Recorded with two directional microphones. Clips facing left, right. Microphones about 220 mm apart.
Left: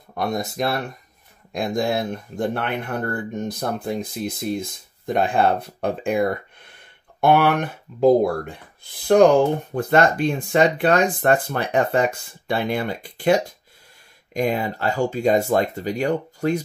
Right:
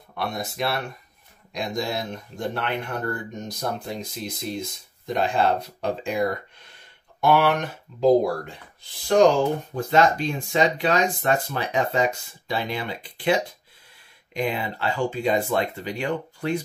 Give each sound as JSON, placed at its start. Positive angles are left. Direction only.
{"t": 0.1, "sound": "speech", "side_deg": 45}